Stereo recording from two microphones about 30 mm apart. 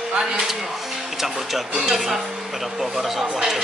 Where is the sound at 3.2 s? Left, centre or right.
Centre.